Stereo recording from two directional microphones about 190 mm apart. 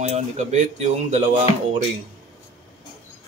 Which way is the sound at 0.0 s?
35° right (ahead or behind).